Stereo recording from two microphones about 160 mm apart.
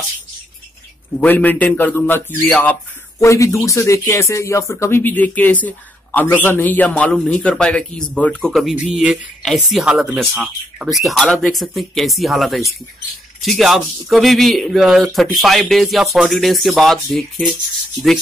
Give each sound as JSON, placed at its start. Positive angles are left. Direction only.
{"t": 1.2, "sound": "a man's voice", "side_deg": 10}